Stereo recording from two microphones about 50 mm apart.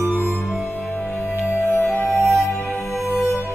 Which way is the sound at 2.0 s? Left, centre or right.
Centre.